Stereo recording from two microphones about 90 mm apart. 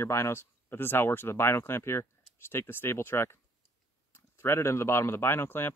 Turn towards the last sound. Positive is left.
turn(degrees=25)  # may be behind; listen again after turning